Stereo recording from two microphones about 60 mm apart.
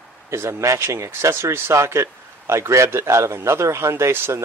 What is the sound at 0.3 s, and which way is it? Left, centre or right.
A man's voice, right.